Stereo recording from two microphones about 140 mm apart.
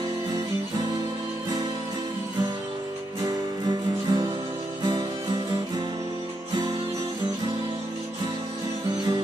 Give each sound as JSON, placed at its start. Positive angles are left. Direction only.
{"t": 3.6, "sound": "music", "side_deg": -30}